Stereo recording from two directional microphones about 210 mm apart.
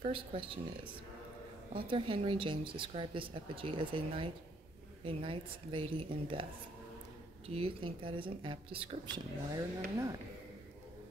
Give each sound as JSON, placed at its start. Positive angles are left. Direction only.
{"t": 0.0, "sound": "speech", "side_deg": -25}
{"t": 1.7, "sound": "speech", "side_deg": -25}
{"t": 7.4, "sound": "speech", "side_deg": -25}